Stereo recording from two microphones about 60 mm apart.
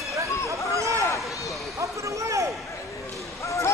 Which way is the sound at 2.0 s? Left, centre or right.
Right.